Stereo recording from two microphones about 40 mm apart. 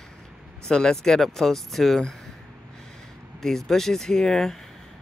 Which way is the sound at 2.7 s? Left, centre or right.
Centre.